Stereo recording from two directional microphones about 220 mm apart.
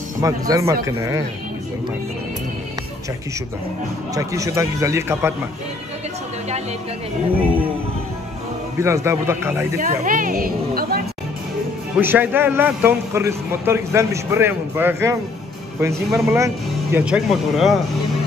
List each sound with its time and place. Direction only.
0.2 s a man's voice: 15° right (ahead or behind)
4.1 s a man's voice: 15° right (ahead or behind)
8.7 s a man's voice: 15° right (ahead or behind)
9.8 s a woman's voice: 40° right (ahead or behind)
12.0 s a man's voice: 10° right (ahead or behind)